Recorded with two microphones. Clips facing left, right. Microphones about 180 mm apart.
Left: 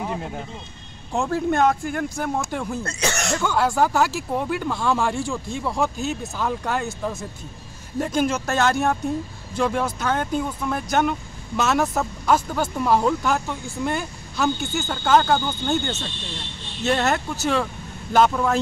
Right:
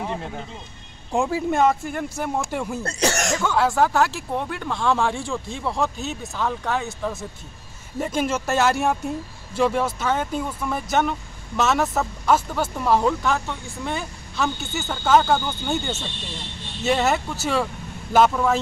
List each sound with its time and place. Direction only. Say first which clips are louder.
0.0 s speech: left 1 dB; 5° left (ahead or behind)
1.1 s speech: even; 10° right (ahead or behind)
2.8 s speech: right 3 dB; 40° right (ahead or behind)
3.3 s speech: even; centre (ahead or behind)